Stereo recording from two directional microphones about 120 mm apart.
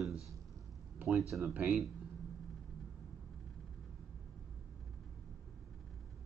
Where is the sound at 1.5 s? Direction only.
10° right (ahead or behind).